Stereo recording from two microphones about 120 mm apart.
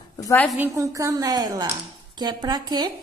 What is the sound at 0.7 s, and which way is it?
A woman's voice, 25° right (ahead or behind).